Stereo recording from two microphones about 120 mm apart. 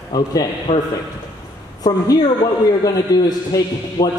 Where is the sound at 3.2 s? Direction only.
35° left (ahead or behind).